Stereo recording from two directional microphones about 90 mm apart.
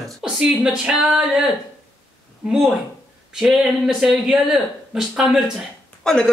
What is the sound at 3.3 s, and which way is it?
Speech, 5° right (ahead or behind).